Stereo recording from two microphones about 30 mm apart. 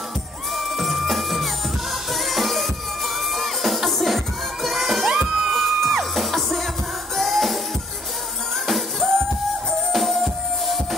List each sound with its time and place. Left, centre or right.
0.6 s music: centre
5.1 s music: right
5.5 s music: centre
8.6 s music: centre